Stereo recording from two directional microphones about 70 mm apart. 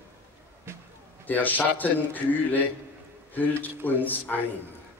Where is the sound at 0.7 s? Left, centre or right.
Right.